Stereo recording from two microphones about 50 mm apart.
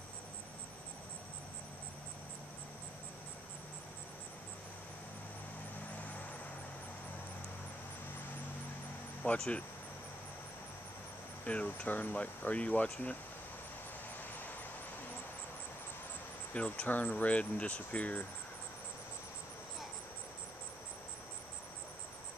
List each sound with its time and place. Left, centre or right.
9.2 s a sound: left
11.4 s speech: left
16.5 s speech: left